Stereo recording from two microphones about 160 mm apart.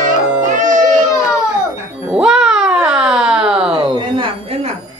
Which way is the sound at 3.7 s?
35° right (ahead or behind).